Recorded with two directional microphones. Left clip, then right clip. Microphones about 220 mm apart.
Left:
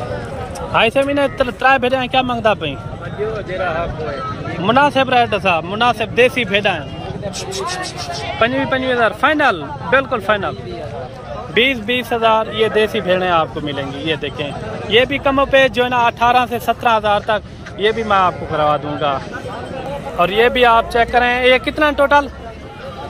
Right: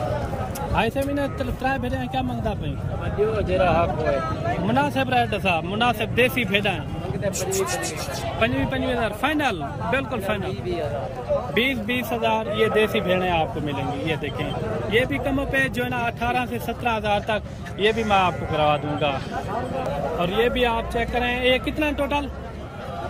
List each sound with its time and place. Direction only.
0.7 s speech: centre (ahead or behind)
3.5 s speech: 45° right (ahead or behind)
4.6 s speech: 5° right (ahead or behind)
8.4 s speech: 5° right (ahead or behind)
11.5 s speech: centre (ahead or behind)
20.2 s speech: 5° left (ahead or behind)